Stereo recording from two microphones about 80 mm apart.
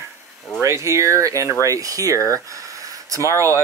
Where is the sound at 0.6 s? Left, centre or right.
Right.